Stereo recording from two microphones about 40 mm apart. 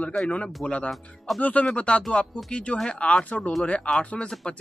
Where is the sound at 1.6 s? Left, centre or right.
Left.